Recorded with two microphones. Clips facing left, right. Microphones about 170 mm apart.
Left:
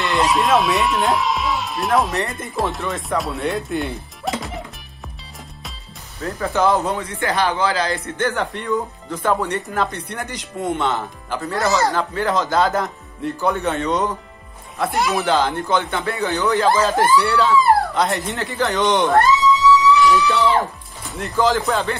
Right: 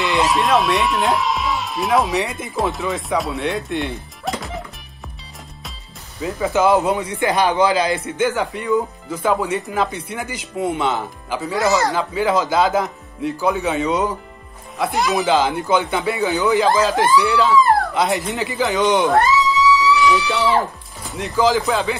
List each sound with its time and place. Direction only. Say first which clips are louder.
0.0 s speech: even; centre (ahead or behind)
6.2 s speech: right 2 dB; 5° right (ahead or behind)
6.7 s a man's voice: right 3 dB; 15° right (ahead or behind)
8.2 s speech: right 2 dB; 5° right (ahead or behind)
15.8 s a man's voice: right 3 dB; 15° right (ahead or behind)
16.2 s speech: right 2 dB; 5° right (ahead or behind)
20.2 s speech: left 1 dB; centre (ahead or behind)